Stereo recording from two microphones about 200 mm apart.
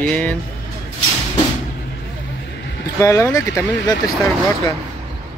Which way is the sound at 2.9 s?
15° left (ahead or behind).